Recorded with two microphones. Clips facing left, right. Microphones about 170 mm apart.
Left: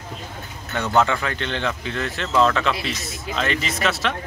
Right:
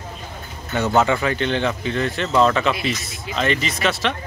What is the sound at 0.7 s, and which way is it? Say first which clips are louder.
Speech: right 2 dB; 5° right (ahead or behind).